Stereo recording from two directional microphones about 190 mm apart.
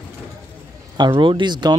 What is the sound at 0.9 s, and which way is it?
Speech, 25° right (ahead or behind).